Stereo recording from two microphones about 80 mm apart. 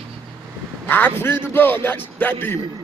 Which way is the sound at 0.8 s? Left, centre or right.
Left.